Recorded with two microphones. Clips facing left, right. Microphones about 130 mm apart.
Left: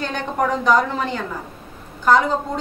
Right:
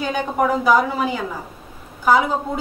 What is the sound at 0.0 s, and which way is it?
A woman's voice, 5° right (ahead or behind).